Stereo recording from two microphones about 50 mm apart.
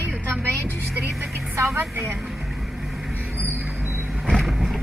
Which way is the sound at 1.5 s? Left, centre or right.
Right.